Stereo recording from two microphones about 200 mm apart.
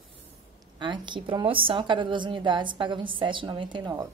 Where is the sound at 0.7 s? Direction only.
25° right (ahead or behind).